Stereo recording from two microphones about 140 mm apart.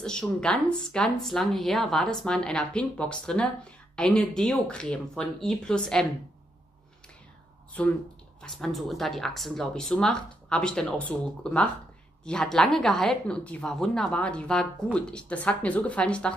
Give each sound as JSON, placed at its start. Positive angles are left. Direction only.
{"t": 0.0, "sound": "a woman's voice", "side_deg": 5}
{"t": 8.4, "sound": "a woman's voice", "side_deg": 5}